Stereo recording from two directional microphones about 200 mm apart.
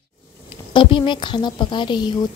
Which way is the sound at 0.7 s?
25° left (ahead or behind).